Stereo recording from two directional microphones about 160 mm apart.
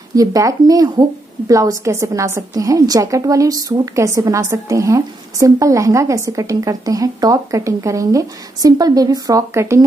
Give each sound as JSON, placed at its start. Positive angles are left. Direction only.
{"t": 0.1, "sound": "a woman's voice", "side_deg": -20}